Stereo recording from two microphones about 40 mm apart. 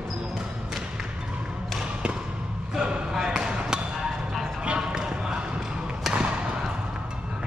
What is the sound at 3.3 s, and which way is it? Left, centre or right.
Basketball bounce, centre.